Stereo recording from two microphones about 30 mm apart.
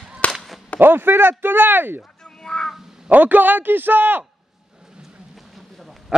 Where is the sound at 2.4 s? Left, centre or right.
Left.